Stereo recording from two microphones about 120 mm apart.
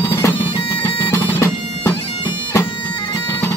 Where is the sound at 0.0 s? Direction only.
25° left (ahead or behind).